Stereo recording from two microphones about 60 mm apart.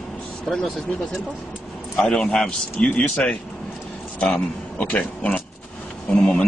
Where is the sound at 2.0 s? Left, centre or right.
Centre.